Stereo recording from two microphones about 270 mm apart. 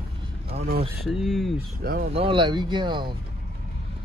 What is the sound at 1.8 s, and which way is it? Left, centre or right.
Speech, right.